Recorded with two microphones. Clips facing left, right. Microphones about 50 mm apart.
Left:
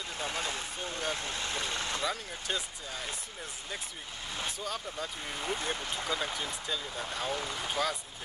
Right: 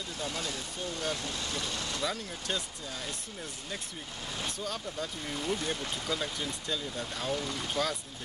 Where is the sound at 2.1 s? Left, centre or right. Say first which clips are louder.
Even; centre.